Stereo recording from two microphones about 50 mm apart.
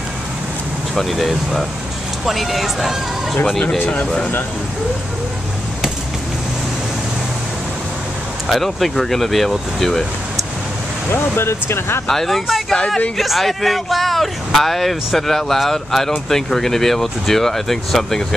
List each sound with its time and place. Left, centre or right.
0.9 s speech: centre
8.5 s speech: centre
11.1 s speech: left
12.1 s speech: centre